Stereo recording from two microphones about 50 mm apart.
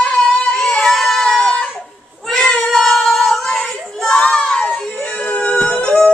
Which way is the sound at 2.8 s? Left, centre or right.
Centre.